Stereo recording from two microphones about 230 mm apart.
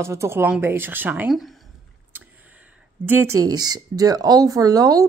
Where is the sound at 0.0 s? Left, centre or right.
Centre.